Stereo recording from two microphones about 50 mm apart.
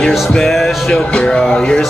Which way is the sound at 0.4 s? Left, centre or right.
Centre.